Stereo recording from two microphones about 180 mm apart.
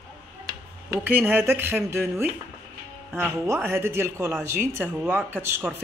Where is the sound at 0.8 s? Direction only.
10° right (ahead or behind).